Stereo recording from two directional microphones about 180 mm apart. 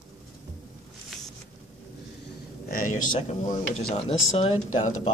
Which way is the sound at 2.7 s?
50° left (ahead or behind).